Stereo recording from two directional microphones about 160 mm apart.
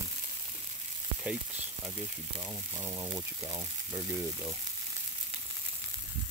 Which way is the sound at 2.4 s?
20° right (ahead or behind).